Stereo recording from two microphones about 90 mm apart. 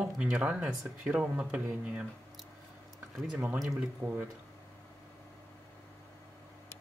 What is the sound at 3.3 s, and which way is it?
Speech, 20° right (ahead or behind).